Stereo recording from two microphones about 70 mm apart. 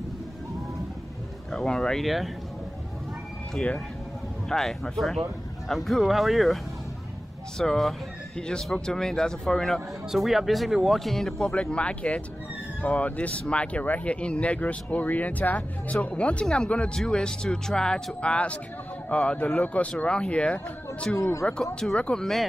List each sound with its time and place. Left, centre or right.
1.5 s speech: centre
3.6 s speech: centre
4.5 s speech: centre
11.5 s a man's voice: centre
21.2 s speech: left
21.7 s speech: centre